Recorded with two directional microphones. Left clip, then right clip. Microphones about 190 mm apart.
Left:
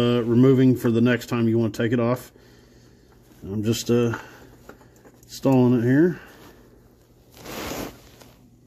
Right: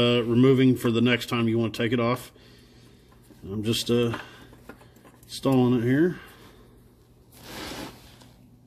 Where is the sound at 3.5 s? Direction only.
45° left (ahead or behind).